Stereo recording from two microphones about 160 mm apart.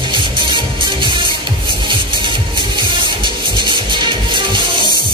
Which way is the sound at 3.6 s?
30° right (ahead or behind).